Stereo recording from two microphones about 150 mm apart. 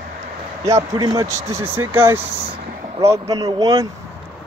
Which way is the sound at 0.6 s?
25° right (ahead or behind).